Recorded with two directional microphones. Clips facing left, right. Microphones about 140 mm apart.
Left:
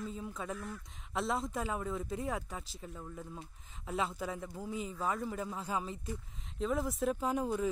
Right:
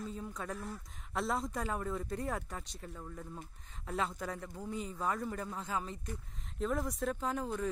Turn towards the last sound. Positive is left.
turn(degrees=10)  # may be behind; listen again after turning